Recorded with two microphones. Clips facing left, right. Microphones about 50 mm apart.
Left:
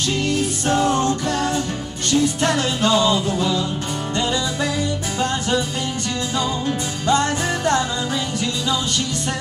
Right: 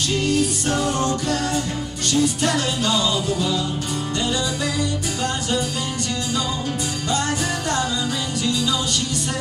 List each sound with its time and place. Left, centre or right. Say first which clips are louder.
0.3 s music: left 1 dB; left
2.0 s music: left 2 dB; left
7.1 s music: left 5 dB; left